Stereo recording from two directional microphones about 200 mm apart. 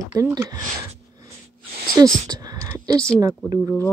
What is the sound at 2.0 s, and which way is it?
Speech, 20° right (ahead or behind).